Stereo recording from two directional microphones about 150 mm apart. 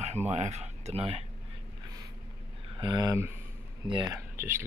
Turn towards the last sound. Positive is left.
turn(degrees=-15)  # may be behind; listen again after turning